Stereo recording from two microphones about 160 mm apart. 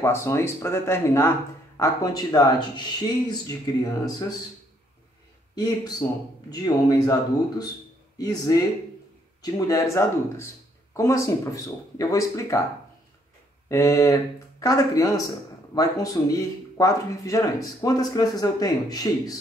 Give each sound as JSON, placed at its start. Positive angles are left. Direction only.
{"t": 0.0, "sound": "speech", "side_deg": 15}
{"t": 5.6, "sound": "speech", "side_deg": 20}
{"t": 13.7, "sound": "speech", "side_deg": 20}